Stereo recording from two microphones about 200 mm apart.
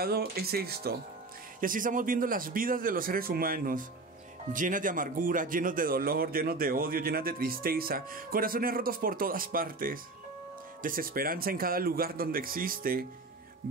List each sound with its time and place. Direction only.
0.0 s speech: 50° right (ahead or behind)